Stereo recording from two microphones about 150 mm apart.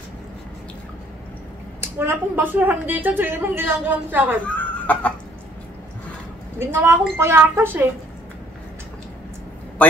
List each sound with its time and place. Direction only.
1.8 s a woman's voice: 15° right (ahead or behind)
4.6 s a sound: 10° left (ahead or behind)
6.6 s a woman's voice: 15° right (ahead or behind)